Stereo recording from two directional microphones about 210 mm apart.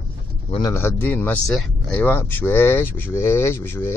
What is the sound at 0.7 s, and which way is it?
Speech, 10° left (ahead or behind).